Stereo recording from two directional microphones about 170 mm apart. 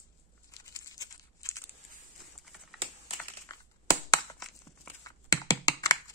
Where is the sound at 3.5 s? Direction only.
20° left (ahead or behind).